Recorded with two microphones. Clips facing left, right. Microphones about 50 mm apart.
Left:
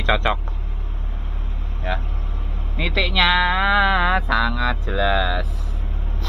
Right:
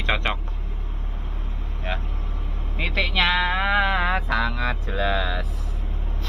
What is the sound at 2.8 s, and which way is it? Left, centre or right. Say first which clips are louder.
Music: left 3 dB; left.